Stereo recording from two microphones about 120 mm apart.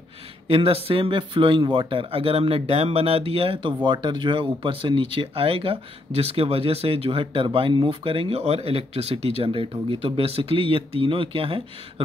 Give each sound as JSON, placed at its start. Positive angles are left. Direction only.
{"t": 0.5, "sound": "speech", "side_deg": -55}